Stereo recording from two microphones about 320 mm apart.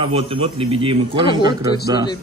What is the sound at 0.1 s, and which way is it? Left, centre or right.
A man's voice, centre.